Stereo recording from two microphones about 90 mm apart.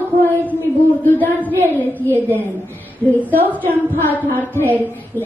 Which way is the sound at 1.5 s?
20° right (ahead or behind).